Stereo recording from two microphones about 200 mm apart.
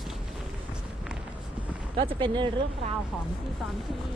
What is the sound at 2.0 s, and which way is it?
Speech, 25° right (ahead or behind).